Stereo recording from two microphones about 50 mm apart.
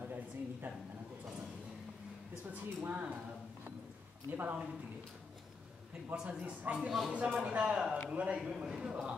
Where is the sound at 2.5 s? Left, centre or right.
Right.